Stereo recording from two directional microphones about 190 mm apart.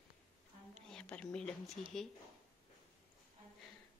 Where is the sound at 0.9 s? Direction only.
5° left (ahead or behind).